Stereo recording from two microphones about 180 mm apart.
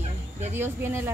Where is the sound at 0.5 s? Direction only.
15° right (ahead or behind).